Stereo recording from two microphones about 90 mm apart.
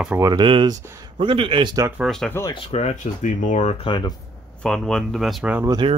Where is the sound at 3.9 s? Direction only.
80° left.